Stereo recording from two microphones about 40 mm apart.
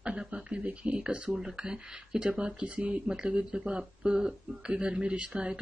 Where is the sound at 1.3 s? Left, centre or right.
Centre.